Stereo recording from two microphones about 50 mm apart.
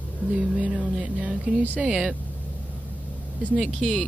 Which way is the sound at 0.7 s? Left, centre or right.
Centre.